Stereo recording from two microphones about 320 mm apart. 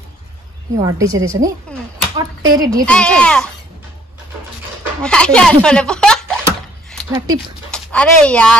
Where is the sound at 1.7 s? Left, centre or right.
Centre.